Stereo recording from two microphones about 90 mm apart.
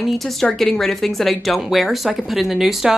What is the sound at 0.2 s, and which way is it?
Speech, 5° left (ahead or behind).